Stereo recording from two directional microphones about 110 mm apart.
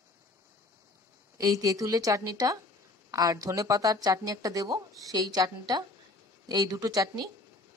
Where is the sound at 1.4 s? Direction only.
30° right (ahead or behind).